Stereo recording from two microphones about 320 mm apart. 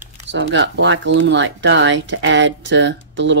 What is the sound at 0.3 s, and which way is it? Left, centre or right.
Speech, right.